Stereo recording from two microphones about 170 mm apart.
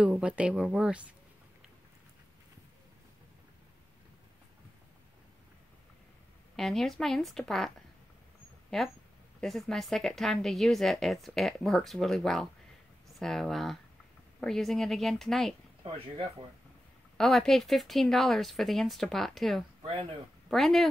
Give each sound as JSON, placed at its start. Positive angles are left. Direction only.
{"t": 0.0, "sound": "speech", "side_deg": -10}
{"t": 6.5, "sound": "a woman's voice", "side_deg": 0}
{"t": 8.6, "sound": "a sound", "side_deg": 0}
{"t": 9.4, "sound": "a woman's voice", "side_deg": 0}
{"t": 15.8, "sound": "speech", "side_deg": -30}
{"t": 17.2, "sound": "a woman's voice", "side_deg": 0}
{"t": 19.8, "sound": "speech", "side_deg": -35}
{"t": 20.4, "sound": "a woman's voice", "side_deg": 0}